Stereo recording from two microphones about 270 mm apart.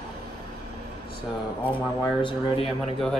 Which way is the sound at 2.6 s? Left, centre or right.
Centre.